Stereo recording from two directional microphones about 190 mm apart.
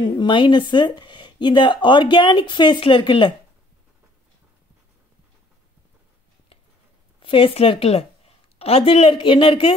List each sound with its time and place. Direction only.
0.0 s speech: 25° left (ahead or behind)
7.2 s speech: 30° left (ahead or behind)